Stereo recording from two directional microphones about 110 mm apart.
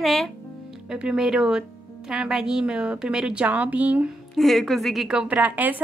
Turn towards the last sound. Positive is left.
turn(degrees=-15)  # may be behind; listen again after turning